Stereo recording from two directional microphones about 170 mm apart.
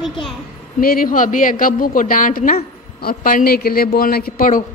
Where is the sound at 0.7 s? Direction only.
55° left (ahead or behind).